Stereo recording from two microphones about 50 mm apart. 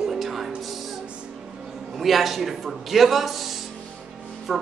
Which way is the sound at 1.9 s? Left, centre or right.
Centre.